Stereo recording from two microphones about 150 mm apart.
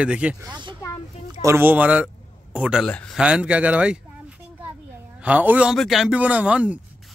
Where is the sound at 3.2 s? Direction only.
10° right (ahead or behind).